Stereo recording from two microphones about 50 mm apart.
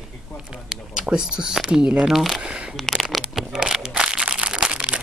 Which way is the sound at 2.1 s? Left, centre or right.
Centre.